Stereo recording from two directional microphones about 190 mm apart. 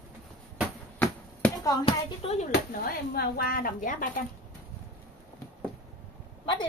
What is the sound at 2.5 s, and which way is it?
Speech, 55° left (ahead or behind).